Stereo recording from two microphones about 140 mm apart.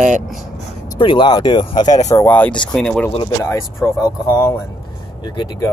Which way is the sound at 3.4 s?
20° left (ahead or behind).